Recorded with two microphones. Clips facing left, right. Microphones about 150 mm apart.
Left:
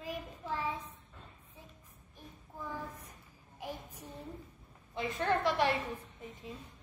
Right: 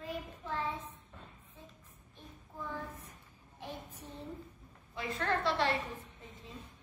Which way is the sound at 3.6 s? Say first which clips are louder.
Left 2 dB; 10° left (ahead or behind).